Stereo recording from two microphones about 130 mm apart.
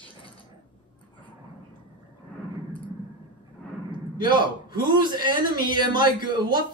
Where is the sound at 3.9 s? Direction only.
35° right (ahead or behind).